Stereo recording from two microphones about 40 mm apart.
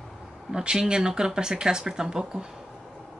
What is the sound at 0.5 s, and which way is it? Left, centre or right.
Speech, centre.